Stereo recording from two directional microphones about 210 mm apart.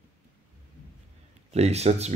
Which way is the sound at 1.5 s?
30° right (ahead or behind).